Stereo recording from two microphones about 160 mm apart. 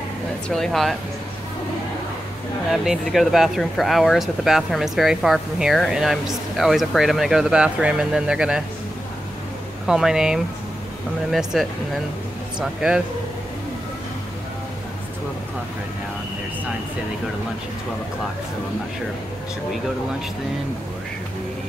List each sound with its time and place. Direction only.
0.5 s speech: centre (ahead or behind)
2.7 s speech: centre (ahead or behind)
9.8 s speech: 5° right (ahead or behind)